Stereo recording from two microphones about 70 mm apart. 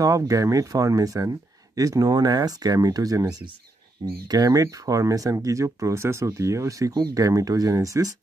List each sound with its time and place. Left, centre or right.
0.0 s speech: right